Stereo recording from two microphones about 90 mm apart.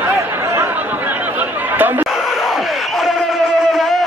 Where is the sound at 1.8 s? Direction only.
20° right (ahead or behind).